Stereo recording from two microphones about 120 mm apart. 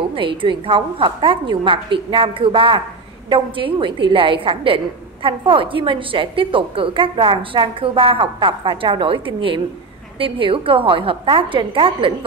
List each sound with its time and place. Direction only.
0.1 s a woman's voice: 45° right (ahead or behind)